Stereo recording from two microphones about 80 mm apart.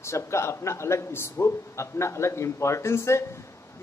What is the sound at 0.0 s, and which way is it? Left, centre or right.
A man's voice, left.